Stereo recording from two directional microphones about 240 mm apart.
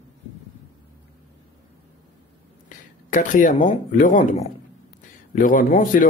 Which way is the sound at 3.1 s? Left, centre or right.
Left.